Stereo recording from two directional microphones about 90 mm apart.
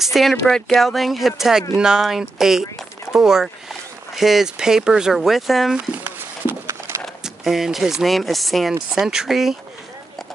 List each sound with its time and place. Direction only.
0.0 s speech: centre (ahead or behind)
6.0 s a sound: 30° right (ahead or behind)
7.2 s speech: 5° right (ahead or behind)